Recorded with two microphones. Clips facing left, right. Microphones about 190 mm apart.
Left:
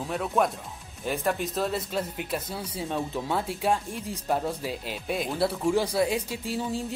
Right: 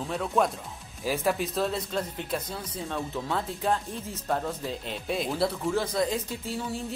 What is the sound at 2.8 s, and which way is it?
Speech, 15° left (ahead or behind).